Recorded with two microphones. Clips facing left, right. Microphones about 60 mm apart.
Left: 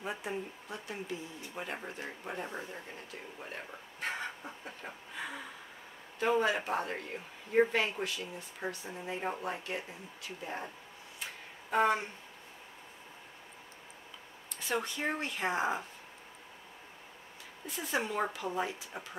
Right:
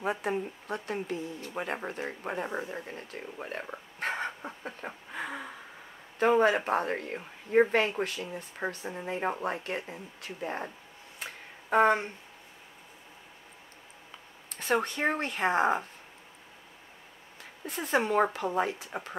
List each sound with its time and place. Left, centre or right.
0.0 s speech: right
1.5 s speech: right
11.7 s speech: right
14.6 s speech: right
17.6 s speech: right